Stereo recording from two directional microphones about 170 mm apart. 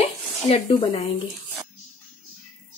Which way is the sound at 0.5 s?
35° left (ahead or behind).